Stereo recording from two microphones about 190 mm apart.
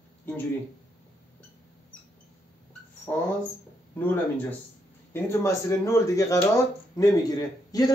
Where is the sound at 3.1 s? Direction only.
10° left (ahead or behind).